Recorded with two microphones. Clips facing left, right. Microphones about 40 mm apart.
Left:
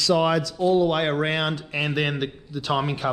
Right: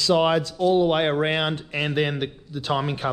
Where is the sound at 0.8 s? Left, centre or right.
Right.